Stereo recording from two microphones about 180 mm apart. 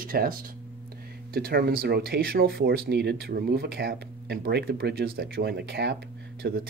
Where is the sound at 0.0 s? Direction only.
55° right (ahead or behind).